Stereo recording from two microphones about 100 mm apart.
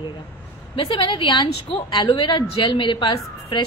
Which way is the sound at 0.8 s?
60° left (ahead or behind).